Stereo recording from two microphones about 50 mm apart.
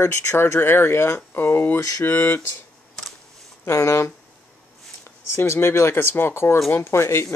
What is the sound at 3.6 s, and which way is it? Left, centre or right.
Speech, left.